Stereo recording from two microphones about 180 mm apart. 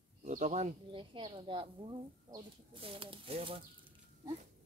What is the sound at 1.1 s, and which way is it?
Speech, 25° right (ahead or behind).